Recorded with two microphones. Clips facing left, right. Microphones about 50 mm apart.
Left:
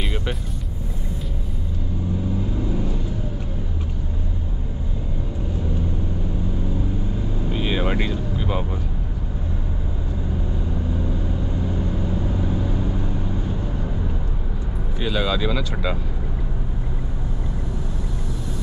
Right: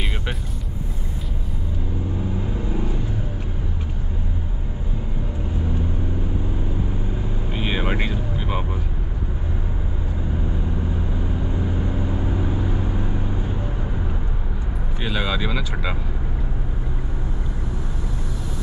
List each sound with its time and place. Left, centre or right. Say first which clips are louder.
2.7 s vehicle: left 1 dB; centre
7.4 s vehicle: left 2 dB; centre
11.6 s vehicle: even; centre
15.0 s vehicle: left 2 dB; centre